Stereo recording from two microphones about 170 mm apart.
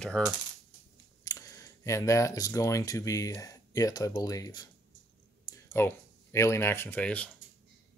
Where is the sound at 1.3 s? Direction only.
20° left (ahead or behind).